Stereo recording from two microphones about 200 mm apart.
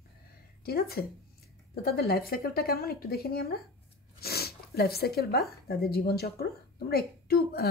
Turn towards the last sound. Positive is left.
turn(degrees=50)  # may be behind; listen again after turning